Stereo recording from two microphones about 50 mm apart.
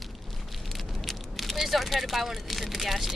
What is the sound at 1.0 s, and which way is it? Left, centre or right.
Speech, centre.